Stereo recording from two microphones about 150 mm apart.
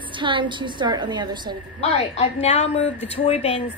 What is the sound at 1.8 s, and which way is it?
A woman's voice, 50° left (ahead or behind).